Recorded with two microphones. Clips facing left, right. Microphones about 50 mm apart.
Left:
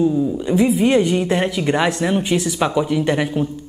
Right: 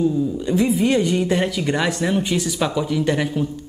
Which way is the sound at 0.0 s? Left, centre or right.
Centre.